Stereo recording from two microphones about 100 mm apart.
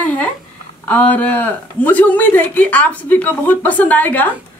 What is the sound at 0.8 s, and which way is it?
A woman's voice, 15° left (ahead or behind).